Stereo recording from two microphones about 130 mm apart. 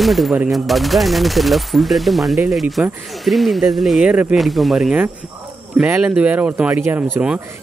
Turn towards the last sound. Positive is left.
turn(degrees=-10)  # may be behind; listen again after turning